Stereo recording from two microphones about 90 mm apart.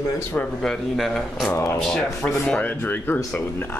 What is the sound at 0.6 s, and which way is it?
Speech, 5° left (ahead or behind).